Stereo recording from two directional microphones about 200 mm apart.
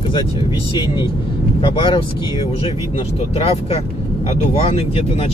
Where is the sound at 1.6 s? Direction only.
25° left (ahead or behind).